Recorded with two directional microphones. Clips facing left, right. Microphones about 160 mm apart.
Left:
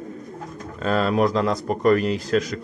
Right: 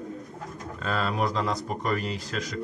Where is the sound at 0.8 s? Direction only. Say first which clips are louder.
Left 8 dB; 60° left (ahead or behind).